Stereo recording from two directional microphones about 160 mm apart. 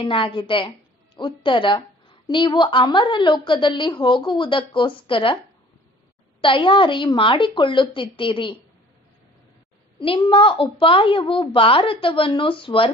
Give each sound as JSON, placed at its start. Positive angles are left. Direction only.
{"t": 0.0, "sound": "a woman's voice", "side_deg": 30}
{"t": 6.4, "sound": "a woman's voice", "side_deg": 30}
{"t": 9.9, "sound": "a woman's voice", "side_deg": 35}